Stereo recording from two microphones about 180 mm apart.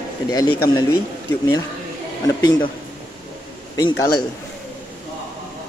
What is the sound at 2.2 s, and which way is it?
Speech, 20° left (ahead or behind).